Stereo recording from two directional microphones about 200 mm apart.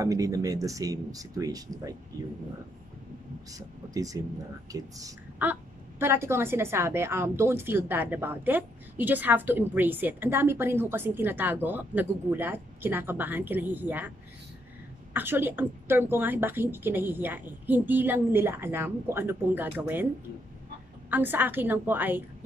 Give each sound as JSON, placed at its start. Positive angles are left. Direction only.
{"t": 0.0, "sound": "a woman's voice", "side_deg": -15}
{"t": 3.5, "sound": "a woman's voice", "side_deg": -15}
{"t": 15.1, "sound": "a woman's voice", "side_deg": -10}
{"t": 21.1, "sound": "a woman's voice", "side_deg": -10}